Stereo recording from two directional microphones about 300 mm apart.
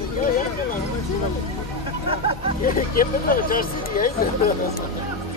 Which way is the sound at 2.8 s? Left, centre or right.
Left.